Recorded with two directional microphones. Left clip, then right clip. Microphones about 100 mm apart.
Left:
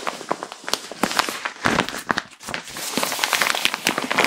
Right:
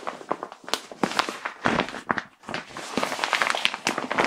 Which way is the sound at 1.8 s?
45° left (ahead or behind).